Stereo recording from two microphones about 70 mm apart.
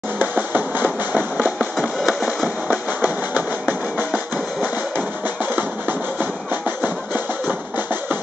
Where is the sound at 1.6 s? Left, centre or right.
Centre.